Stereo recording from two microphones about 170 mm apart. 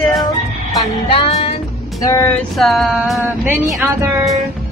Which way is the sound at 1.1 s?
35° left (ahead or behind).